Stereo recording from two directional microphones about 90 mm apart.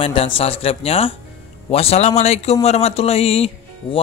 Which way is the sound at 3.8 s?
70° left (ahead or behind).